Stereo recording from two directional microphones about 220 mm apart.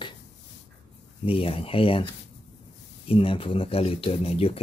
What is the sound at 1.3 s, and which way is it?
Speech, 25° left (ahead or behind).